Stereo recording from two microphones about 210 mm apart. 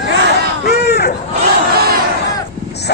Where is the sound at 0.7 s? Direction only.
50° left (ahead or behind).